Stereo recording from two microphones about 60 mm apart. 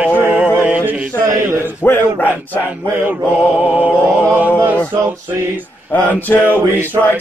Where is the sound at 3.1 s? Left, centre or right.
Right.